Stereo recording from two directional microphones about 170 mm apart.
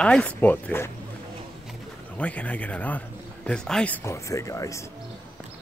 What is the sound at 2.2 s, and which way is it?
A man's voice, 10° left (ahead or behind).